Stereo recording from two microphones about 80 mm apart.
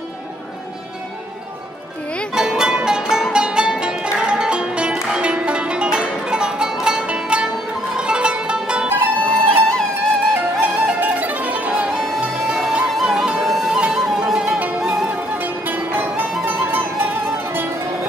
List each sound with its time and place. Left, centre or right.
2.3 s music: centre
9.2 s music: centre
11.0 s music: right
12.5 s music: centre
15.3 s music: right